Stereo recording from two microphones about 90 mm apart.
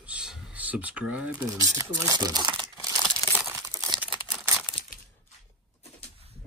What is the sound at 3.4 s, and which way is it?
Tearing, 30° right (ahead or behind).